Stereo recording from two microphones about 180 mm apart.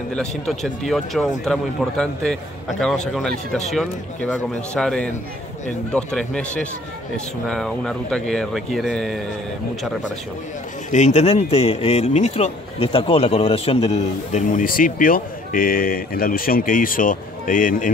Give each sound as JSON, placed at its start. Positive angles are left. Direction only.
{"t": 0.1, "sound": "speech", "side_deg": 5}
{"t": 10.9, "sound": "speech", "side_deg": 40}